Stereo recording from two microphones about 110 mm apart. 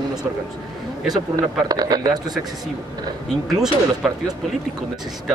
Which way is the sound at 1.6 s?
35° right (ahead or behind).